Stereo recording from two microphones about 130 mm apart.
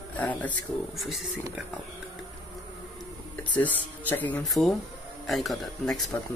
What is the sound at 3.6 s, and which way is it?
Speech, 10° left (ahead or behind).